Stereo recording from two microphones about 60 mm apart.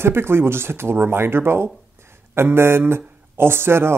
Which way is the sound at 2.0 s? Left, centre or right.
Right.